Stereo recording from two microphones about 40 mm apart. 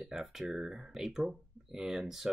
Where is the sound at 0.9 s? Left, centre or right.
Centre.